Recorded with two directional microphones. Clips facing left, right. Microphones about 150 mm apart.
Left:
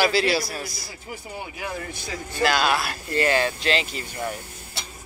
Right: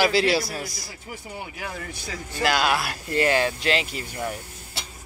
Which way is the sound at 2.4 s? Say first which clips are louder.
Left 1 dB; 15° right (ahead or behind).